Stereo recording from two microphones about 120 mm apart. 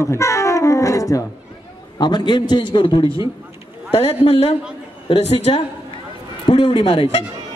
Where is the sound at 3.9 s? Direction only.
55° left (ahead or behind).